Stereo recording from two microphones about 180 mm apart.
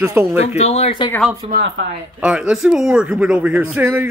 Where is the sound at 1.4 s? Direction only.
30° right (ahead or behind).